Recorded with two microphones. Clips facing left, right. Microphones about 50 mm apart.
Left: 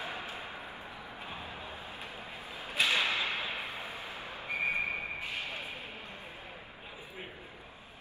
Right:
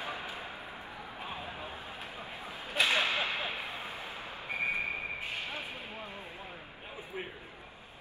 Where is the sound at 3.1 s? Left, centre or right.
Right.